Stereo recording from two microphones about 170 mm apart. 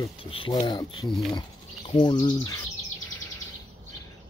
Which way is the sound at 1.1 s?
Centre (ahead or behind).